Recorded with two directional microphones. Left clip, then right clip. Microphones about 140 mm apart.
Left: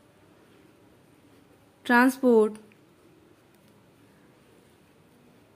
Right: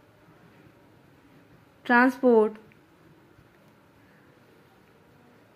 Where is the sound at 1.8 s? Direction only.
35° left (ahead or behind).